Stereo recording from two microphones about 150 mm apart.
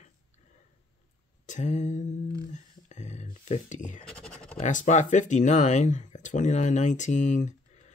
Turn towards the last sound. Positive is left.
turn(degrees=50)  # may be behind; listen again after turning